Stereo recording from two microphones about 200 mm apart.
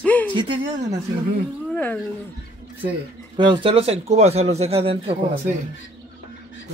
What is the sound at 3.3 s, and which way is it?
Speech, 25° right (ahead or behind).